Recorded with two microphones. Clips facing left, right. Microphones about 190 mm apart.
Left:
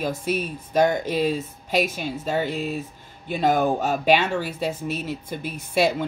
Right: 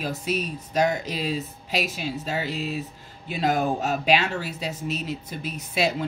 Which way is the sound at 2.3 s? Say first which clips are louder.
Left 5 dB; 50° left (ahead or behind).